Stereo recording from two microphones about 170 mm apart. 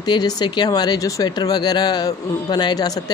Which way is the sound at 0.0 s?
25° left (ahead or behind).